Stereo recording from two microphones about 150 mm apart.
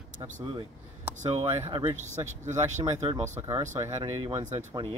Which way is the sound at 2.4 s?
50° right (ahead or behind).